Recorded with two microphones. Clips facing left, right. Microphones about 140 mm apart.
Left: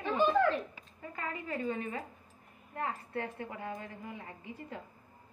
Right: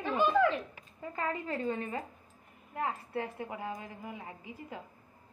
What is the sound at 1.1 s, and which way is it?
A woman's voice, 30° right (ahead or behind).